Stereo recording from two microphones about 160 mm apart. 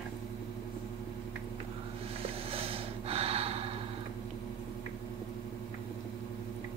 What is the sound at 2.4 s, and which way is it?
Snort, 35° right (ahead or behind).